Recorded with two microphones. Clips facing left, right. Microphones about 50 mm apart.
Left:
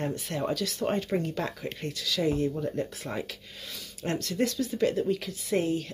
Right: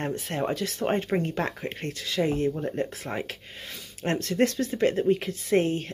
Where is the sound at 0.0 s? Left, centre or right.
Right.